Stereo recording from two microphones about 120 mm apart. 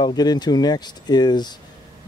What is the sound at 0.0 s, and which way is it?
Speech, 35° left (ahead or behind).